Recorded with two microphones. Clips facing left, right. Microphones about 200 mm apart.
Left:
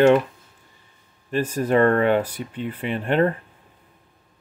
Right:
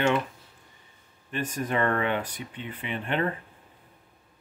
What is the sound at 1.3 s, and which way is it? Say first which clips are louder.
Speech: left 9 dB; 40° left (ahead or behind).